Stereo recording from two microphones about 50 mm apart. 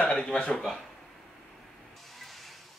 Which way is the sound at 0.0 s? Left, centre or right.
Left.